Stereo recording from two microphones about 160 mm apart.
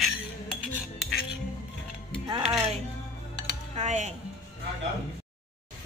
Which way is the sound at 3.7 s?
45° right (ahead or behind).